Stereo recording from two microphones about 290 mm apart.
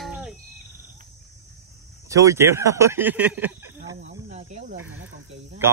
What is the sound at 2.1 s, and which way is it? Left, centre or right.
Speech, centre.